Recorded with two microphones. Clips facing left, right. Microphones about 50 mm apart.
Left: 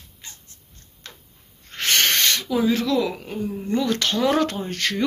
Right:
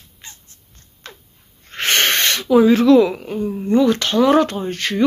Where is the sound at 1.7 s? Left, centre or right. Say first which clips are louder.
Right 4 dB; right.